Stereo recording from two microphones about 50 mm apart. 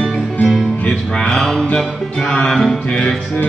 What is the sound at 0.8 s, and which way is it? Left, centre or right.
Music, centre.